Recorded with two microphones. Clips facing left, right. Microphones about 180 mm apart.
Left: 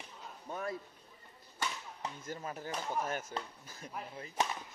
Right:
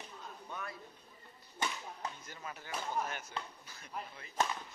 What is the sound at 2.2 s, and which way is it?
Speech, 45° left (ahead or behind).